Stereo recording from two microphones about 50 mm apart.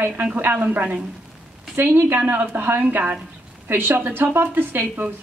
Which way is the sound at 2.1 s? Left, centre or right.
Right.